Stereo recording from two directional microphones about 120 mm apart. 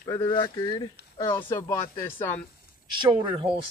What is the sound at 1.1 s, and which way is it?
Speech, 25° left (ahead or behind).